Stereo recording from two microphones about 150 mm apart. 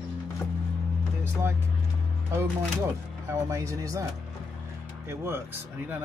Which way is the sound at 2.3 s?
20° right (ahead or behind).